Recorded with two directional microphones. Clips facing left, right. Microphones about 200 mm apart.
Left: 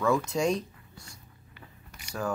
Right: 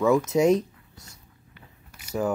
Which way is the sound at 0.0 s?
20° right (ahead or behind).